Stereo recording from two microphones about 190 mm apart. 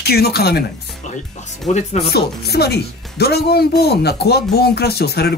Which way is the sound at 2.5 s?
60° left (ahead or behind).